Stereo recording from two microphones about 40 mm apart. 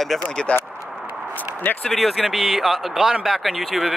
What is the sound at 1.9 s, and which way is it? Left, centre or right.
Speech, centre.